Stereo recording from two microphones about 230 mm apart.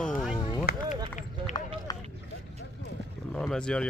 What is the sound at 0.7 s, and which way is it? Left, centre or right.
Speech, left.